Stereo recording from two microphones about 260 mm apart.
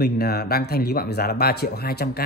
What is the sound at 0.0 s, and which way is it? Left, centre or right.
Speech, left.